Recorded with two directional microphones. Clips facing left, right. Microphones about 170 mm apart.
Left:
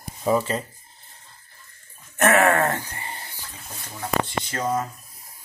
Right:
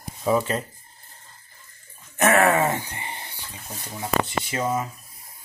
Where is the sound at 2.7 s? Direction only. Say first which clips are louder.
Right 1 dB; 15° right (ahead or behind).